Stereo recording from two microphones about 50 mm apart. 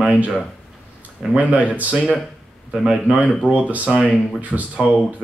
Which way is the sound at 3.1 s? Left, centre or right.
Right.